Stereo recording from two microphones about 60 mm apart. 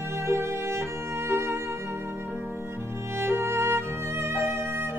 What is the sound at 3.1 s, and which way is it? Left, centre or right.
Music, right.